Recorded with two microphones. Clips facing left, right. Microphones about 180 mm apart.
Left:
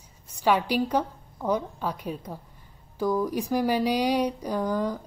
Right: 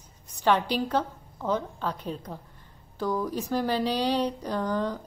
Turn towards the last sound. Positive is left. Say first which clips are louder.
# left 1 dB
turn(degrees=10)  # may be behind; listen again after turning